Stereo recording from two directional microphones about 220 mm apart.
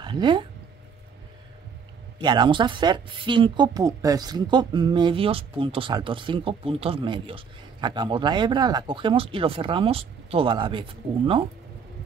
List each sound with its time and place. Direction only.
0.0 s speech: 20° right (ahead or behind)
2.1 s a woman's voice: 20° right (ahead or behind)